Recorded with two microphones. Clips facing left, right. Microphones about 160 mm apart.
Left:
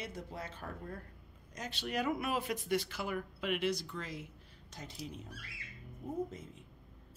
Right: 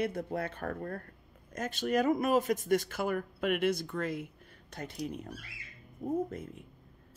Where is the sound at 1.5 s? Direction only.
50° right (ahead or behind).